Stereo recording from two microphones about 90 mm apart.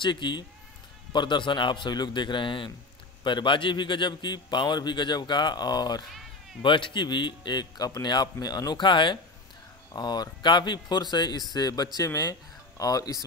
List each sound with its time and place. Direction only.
0.0 s a man's voice: 60° left (ahead or behind)
6.6 s a man's voice: 65° left (ahead or behind)
9.9 s speech: 50° left (ahead or behind)